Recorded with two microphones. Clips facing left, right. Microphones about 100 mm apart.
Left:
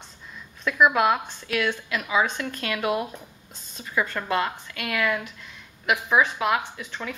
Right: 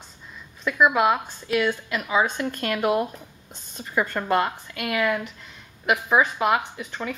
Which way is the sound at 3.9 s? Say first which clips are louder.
Right 3 dB; 15° right (ahead or behind).